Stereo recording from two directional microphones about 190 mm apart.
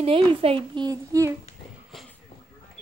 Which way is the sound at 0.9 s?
15° right (ahead or behind).